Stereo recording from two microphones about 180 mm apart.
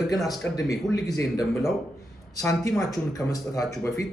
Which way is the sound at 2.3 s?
20° left (ahead or behind).